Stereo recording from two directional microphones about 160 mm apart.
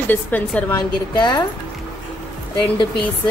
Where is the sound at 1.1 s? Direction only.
25° left (ahead or behind).